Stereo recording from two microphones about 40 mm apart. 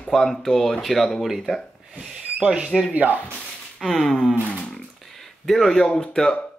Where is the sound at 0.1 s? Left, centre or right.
Centre.